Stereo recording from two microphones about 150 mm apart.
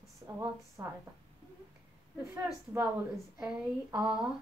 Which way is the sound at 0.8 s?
20° right (ahead or behind).